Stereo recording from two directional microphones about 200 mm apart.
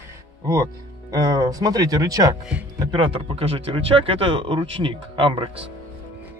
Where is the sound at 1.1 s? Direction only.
20° right (ahead or behind).